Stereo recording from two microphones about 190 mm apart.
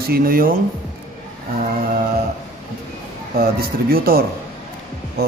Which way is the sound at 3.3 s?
55° right (ahead or behind).